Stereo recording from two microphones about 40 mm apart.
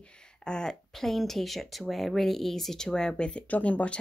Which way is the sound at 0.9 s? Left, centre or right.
Centre.